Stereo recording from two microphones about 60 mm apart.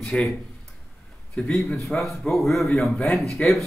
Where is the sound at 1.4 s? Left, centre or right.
Centre.